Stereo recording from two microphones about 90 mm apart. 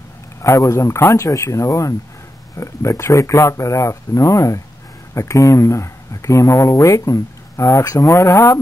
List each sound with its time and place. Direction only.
0.4 s speech: 35° left (ahead or behind)